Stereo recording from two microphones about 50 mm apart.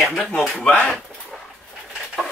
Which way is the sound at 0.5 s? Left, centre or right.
Left.